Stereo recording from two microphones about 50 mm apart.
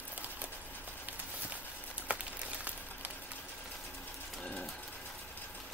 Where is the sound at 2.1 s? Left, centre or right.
Right.